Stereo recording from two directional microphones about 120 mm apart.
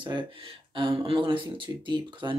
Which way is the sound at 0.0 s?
40° right (ahead or behind).